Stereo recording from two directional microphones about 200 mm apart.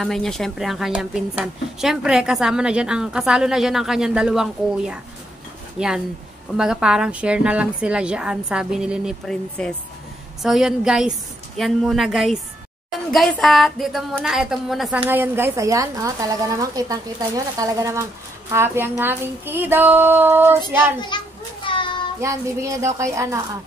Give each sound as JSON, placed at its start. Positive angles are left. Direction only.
{"t": 0.0, "sound": "a woman's voice", "side_deg": 0}
{"t": 21.1, "sound": "a child's voice", "side_deg": 20}
{"t": 21.7, "sound": "child singing", "side_deg": 25}
{"t": 22.2, "sound": "a woman's voice", "side_deg": -15}